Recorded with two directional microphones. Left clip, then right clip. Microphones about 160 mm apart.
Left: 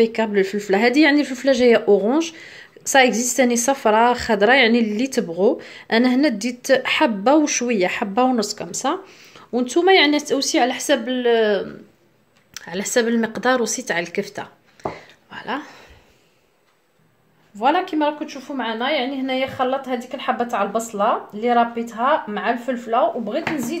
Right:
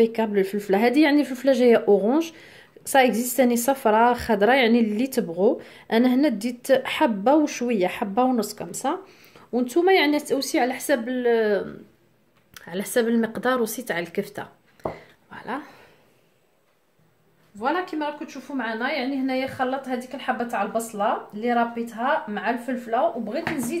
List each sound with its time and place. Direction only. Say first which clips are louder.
0.0 s speech: left 3 dB; centre (ahead or behind)
17.6 s a woman's voice: left 7 dB; 55° left (ahead or behind); by 23.8 s 30° left (ahead or behind)